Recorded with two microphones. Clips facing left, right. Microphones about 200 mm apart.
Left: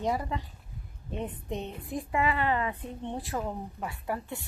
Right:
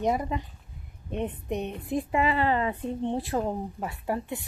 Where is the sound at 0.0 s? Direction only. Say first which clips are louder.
Right 4 dB; 20° right (ahead or behind).